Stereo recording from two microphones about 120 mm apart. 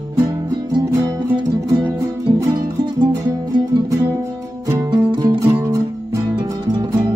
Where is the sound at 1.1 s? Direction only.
40° right (ahead or behind).